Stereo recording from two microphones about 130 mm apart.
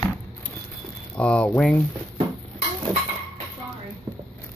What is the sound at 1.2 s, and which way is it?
Speech, 10° left (ahead or behind).